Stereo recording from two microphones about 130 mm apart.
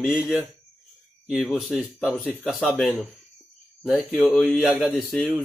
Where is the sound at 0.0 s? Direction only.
5° right (ahead or behind).